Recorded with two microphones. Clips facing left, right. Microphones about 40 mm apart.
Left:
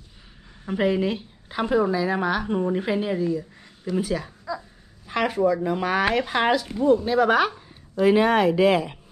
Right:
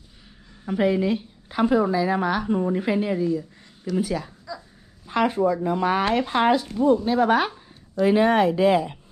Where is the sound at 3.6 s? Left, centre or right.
Left.